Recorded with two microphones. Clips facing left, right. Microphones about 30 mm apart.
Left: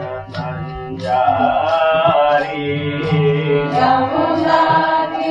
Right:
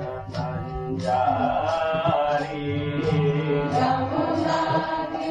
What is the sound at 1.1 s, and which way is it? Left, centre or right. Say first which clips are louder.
Mantra: left 8 dB; left.